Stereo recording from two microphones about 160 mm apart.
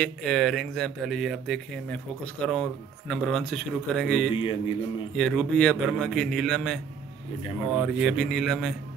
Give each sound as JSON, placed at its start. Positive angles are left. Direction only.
{"t": 0.0, "sound": "speech", "side_deg": 5}
{"t": 4.4, "sound": "a man's voice", "side_deg": 30}
{"t": 5.1, "sound": "speech", "side_deg": 0}